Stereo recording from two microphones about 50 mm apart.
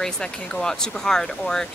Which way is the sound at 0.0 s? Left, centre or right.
Centre.